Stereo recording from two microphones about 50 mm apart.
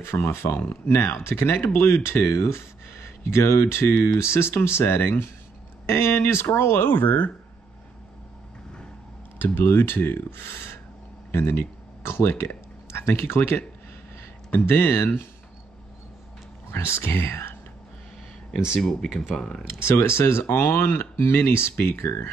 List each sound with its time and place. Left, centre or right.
0.1 s speech: left
9.6 s speech: left
14.5 s speech: left
16.7 s speech: left
18.8 s speech: centre
19.8 s speech: left